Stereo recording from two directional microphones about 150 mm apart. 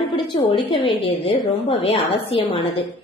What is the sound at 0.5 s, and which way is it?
A woman's voice, 40° left (ahead or behind).